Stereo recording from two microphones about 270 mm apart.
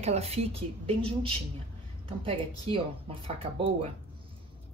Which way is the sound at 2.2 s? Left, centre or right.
Centre.